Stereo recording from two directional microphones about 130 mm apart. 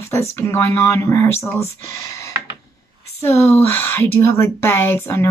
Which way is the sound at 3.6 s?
15° left (ahead or behind).